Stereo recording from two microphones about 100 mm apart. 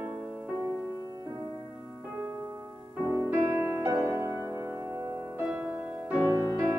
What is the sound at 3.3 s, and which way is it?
Music, 20° right (ahead or behind).